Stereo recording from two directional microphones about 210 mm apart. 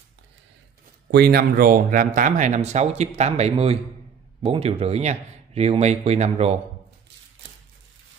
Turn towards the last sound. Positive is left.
turn(degrees=-30)  # may be behind; listen again after turning